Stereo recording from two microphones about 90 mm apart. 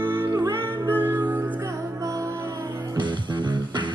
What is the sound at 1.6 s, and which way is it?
Music, 35° right (ahead or behind).